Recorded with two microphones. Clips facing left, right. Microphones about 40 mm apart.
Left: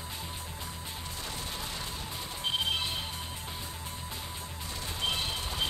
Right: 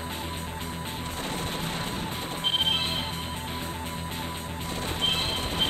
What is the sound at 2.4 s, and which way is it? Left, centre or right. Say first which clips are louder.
Music: right 5 dB; right.